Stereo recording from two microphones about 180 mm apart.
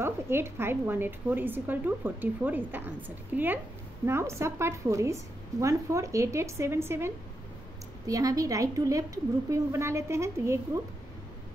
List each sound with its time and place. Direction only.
0.0 s a woman's voice: 15° right (ahead or behind)
8.1 s a woman's voice: 20° right (ahead or behind)